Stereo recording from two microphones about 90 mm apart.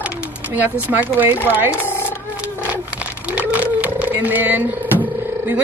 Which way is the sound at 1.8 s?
25° left (ahead or behind).